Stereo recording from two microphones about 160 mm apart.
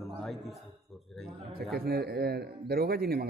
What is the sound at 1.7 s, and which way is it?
A man's voice, 75° right (ahead or behind).